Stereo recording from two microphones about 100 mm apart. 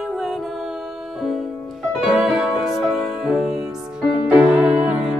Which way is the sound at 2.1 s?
5° right (ahead or behind).